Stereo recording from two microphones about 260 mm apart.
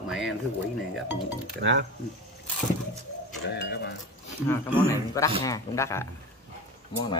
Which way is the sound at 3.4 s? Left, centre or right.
Left.